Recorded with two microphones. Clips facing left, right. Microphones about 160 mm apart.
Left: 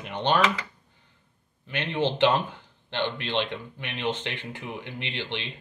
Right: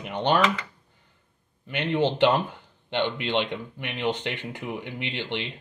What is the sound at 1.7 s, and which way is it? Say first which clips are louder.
Speech: right 4 dB; 10° right (ahead or behind).